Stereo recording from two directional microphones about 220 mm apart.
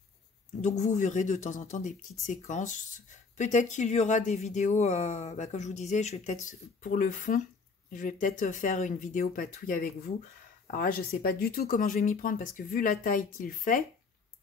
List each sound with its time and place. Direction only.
0.6 s speech: 35° left (ahead or behind)